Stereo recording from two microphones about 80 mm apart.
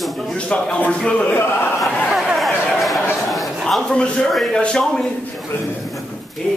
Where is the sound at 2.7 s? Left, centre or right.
Centre.